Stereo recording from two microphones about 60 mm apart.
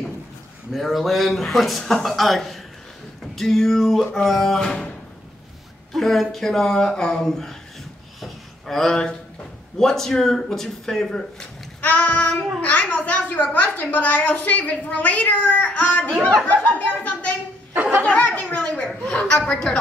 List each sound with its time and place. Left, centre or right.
0.7 s speech: centre
5.9 s speech: centre
8.2 s a sound: centre
9.8 s speech: centre
11.8 s a woman's voice: left